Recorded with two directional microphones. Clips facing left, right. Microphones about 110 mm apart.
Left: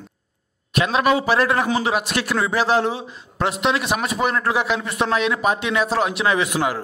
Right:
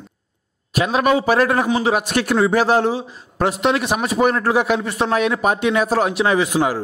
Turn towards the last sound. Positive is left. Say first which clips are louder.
# right 3 dB
turn(degrees=-35)  # may be behind; listen again after turning